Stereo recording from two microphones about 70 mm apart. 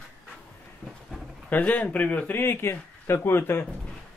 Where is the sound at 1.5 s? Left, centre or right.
Left.